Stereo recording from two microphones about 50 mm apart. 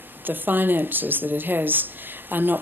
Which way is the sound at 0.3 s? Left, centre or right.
Right.